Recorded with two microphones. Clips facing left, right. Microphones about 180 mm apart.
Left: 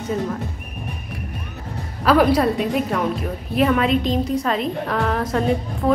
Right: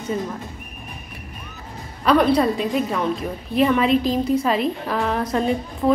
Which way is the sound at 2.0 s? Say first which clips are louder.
Left 1 dB; 5° left (ahead or behind).